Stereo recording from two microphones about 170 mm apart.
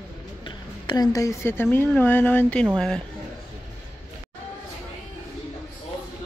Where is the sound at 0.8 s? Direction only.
25° left (ahead or behind).